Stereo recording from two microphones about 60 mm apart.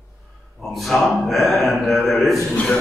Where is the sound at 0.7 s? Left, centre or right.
Centre.